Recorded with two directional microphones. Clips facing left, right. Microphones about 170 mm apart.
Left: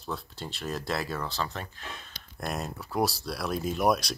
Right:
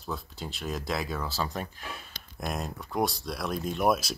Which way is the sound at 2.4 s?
Centre (ahead or behind).